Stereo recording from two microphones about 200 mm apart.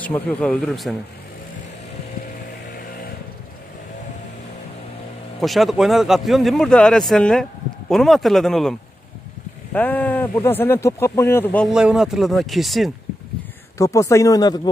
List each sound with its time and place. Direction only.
0.0 s speech: 5° left (ahead or behind)
5.4 s speech: centre (ahead or behind)
9.8 s speech: 10° left (ahead or behind)
11.7 s speech: 5° right (ahead or behind)
13.7 s speech: 15° left (ahead or behind)